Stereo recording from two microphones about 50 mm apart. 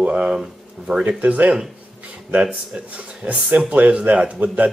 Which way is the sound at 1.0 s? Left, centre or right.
Right.